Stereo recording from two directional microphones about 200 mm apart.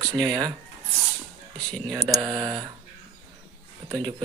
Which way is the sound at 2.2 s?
20° right (ahead or behind).